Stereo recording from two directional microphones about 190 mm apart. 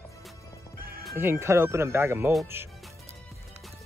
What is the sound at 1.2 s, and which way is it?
Speech, 15° right (ahead or behind).